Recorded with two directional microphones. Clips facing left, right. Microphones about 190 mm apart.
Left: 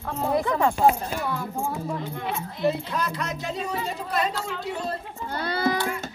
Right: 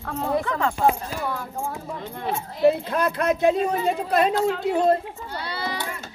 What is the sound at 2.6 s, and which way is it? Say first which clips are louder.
Speech: right 6 dB; 55° right (ahead or behind).